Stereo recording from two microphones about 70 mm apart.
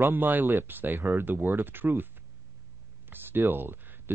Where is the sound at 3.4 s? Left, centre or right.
Right.